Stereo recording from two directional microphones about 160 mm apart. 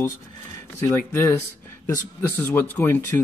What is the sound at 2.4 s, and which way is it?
Speech, 10° left (ahead or behind).